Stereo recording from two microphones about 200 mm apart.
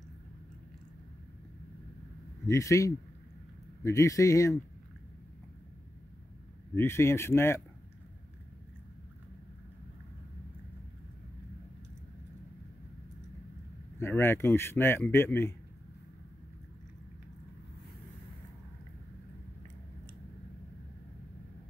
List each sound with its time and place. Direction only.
2.4 s speech: 15° left (ahead or behind)
6.7 s speech: 10° left (ahead or behind)
13.9 s speech: 10° left (ahead or behind)